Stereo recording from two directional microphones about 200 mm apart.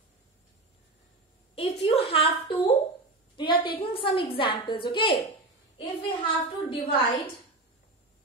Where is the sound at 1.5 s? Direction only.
30° left (ahead or behind).